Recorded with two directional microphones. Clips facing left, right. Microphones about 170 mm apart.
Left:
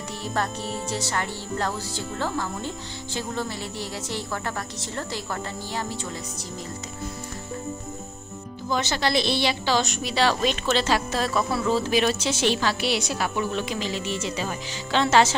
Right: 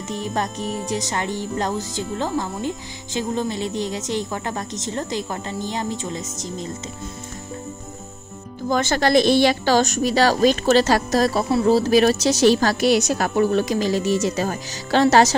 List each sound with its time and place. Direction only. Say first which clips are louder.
0.1 s speech: right 3 dB; 15° right (ahead or behind)
8.6 s a woman's voice: right 6 dB; 50° right (ahead or behind)